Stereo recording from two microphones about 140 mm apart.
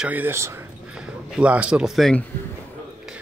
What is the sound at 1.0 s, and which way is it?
A man's voice, 5° right (ahead or behind).